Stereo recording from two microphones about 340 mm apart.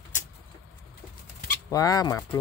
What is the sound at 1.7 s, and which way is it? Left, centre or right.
Speech, centre.